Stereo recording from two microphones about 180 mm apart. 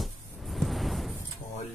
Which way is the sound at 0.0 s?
Centre (ahead or behind).